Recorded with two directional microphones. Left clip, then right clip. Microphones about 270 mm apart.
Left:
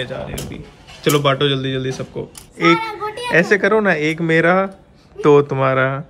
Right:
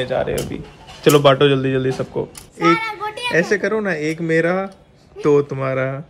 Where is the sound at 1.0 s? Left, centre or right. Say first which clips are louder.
Right 4 dB; centre.